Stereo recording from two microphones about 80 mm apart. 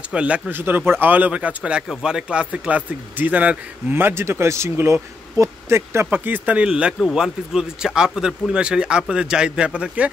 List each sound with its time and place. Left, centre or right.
0.1 s speech: centre